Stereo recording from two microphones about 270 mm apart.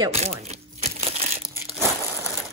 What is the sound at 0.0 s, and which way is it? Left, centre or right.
Chopping, right.